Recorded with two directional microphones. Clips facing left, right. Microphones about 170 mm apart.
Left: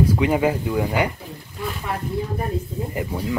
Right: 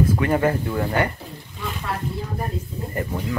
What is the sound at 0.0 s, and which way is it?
Speech, 15° left (ahead or behind).